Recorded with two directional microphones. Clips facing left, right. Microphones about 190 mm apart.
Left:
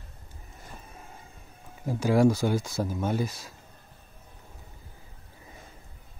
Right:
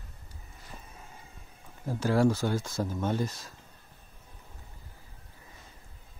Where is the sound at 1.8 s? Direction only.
15° left (ahead or behind).